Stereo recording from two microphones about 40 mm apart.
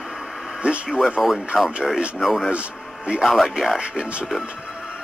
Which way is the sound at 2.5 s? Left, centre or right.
Right.